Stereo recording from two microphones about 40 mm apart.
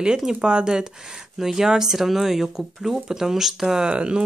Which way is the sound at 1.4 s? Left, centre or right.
Centre.